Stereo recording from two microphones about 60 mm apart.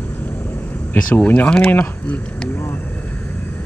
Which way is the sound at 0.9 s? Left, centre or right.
Left.